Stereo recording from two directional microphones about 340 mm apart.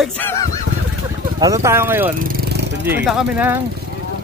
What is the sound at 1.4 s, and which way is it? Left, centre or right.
Speech, centre.